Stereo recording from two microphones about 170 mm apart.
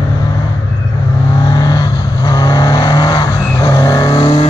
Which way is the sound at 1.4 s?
25° left (ahead or behind).